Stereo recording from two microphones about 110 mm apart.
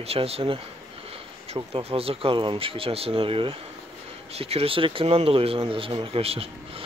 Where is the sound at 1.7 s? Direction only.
60° right (ahead or behind).